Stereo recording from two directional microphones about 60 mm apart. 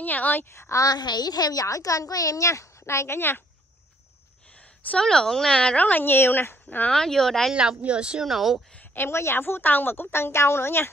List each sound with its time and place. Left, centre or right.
0.0 s a woman's voice: left
0.5 s a woman's voice: left
0.7 s a woman's voice: left
5.0 s speech: centre; by 6.9 s left
6.9 s speech: centre
7.8 s speech: centre
8.3 s speech: centre
8.9 s a woman's voice: left
10.1 s a woman's voice: left